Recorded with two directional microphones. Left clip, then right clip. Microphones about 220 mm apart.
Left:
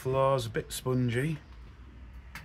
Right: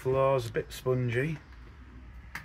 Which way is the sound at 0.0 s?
20° left (ahead or behind).